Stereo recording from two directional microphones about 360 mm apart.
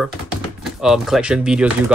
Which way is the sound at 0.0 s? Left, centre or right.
Centre.